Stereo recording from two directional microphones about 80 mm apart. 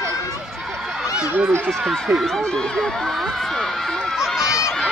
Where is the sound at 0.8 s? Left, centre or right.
Centre.